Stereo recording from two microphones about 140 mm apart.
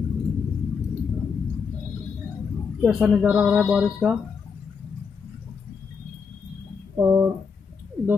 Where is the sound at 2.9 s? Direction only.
5° right (ahead or behind).